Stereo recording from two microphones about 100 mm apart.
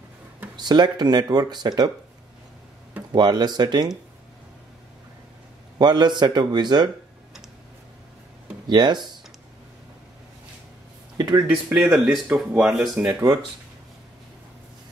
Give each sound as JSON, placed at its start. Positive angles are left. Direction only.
{"t": 0.6, "sound": "speech", "side_deg": -45}
{"t": 3.1, "sound": "speech", "side_deg": -45}
{"t": 5.8, "sound": "speech", "side_deg": -45}
{"t": 8.6, "sound": "speech", "side_deg": -45}
{"t": 11.1, "sound": "speech", "side_deg": -40}
{"t": 11.5, "sound": "speech", "side_deg": -5}
{"t": 13.2, "sound": "speech", "side_deg": -45}